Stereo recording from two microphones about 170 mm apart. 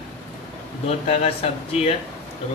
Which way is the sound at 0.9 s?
35° left (ahead or behind).